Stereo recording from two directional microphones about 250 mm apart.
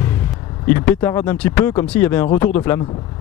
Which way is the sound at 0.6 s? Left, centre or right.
Centre.